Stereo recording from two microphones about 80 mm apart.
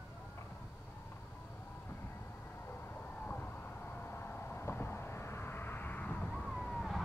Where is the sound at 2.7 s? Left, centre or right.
Left.